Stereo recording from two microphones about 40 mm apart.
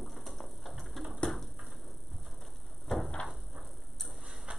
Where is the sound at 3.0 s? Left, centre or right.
Left.